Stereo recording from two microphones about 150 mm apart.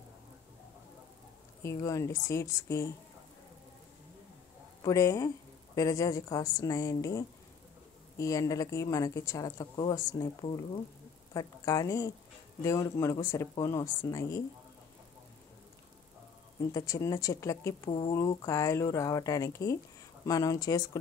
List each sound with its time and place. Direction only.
1.6 s a woman's voice: 20° left (ahead or behind)
4.8 s a woman's voice: 20° left (ahead or behind)
11.3 s a woman's voice: 25° left (ahead or behind)
16.7 s a woman's voice: 25° left (ahead or behind)